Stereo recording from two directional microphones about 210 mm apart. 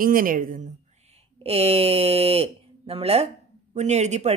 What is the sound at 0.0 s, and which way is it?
Speech, 40° right (ahead or behind).